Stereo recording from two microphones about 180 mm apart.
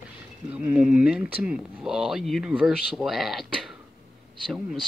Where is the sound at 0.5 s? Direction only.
5° right (ahead or behind).